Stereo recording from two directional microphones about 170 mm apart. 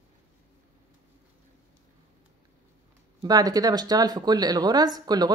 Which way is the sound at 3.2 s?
20° right (ahead or behind).